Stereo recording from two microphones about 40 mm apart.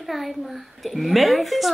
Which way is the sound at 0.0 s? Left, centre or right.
Centre.